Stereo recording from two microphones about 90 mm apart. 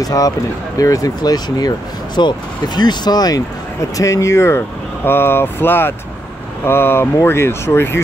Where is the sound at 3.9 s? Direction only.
35° left (ahead or behind).